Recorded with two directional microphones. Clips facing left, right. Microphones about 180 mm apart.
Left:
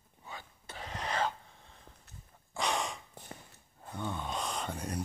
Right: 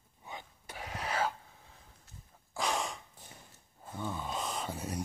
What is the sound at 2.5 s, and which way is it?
Breathing, centre (ahead or behind).